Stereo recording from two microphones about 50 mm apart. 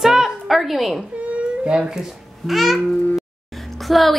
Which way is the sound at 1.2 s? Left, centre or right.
Right.